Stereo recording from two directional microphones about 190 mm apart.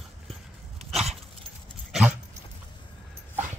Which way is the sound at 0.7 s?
35° right (ahead or behind).